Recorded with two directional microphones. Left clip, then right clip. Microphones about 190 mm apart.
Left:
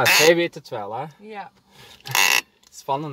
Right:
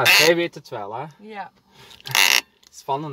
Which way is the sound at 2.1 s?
20° right (ahead or behind).